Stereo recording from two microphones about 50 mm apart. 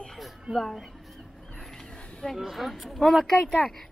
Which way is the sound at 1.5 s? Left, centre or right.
Centre.